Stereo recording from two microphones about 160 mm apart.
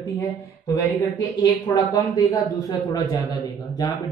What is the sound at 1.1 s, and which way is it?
Speech, 25° left (ahead or behind).